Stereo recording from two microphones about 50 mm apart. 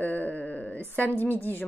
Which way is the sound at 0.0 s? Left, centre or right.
Left.